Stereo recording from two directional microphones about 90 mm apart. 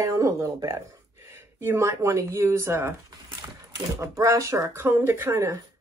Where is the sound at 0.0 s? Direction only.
35° right (ahead or behind).